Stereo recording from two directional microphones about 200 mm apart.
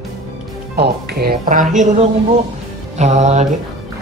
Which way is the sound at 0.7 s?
50° right (ahead or behind).